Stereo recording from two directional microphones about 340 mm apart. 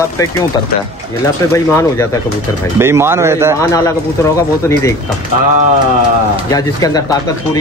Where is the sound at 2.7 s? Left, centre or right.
Centre.